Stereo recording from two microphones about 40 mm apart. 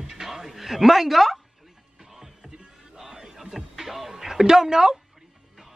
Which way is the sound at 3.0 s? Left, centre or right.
Centre.